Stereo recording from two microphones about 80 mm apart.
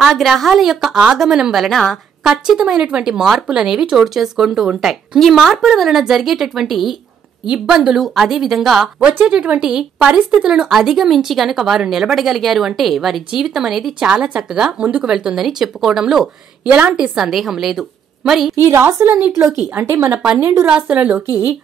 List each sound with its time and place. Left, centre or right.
0.0 s speech: centre
2.2 s speech: centre
9.0 s speech: centre
18.6 s a woman's voice: right
20.6 s speech: centre